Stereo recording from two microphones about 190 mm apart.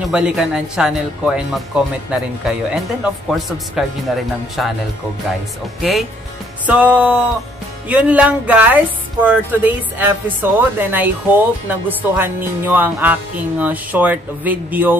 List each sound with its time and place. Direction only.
0.1 s speech: 5° right (ahead or behind)
5.8 s speech: centre (ahead or behind)